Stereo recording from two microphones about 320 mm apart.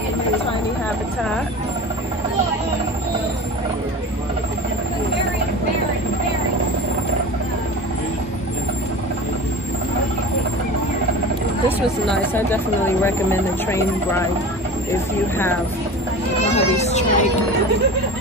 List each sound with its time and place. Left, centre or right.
11.8 s speech: centre
16.5 s children playing: centre